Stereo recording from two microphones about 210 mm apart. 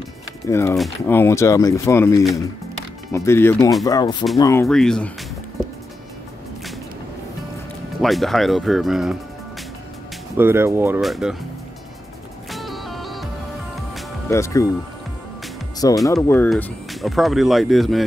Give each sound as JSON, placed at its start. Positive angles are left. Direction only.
{"t": 0.5, "sound": "speech", "side_deg": 10}
{"t": 0.7, "sound": "speech", "side_deg": 0}
{"t": 1.1, "sound": "speech", "side_deg": 10}
{"t": 4.6, "sound": "speech", "side_deg": 5}
{"t": 8.0, "sound": "speech", "side_deg": 0}
{"t": 10.3, "sound": "speech", "side_deg": -10}
{"t": 11.0, "sound": "speech", "side_deg": 0}
{"t": 12.4, "sound": "music", "side_deg": 0}
{"t": 14.3, "sound": "speech", "side_deg": 15}
{"t": 16.1, "sound": "speech", "side_deg": 15}